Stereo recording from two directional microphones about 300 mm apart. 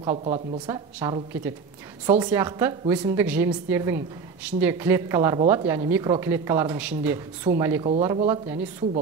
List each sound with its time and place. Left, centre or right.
0.0 s a woman's voice: centre